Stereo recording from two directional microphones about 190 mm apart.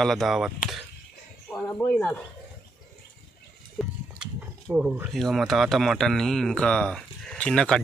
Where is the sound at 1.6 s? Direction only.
10° left (ahead or behind).